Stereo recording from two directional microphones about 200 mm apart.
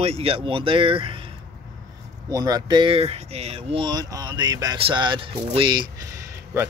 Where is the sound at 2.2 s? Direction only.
20° right (ahead or behind).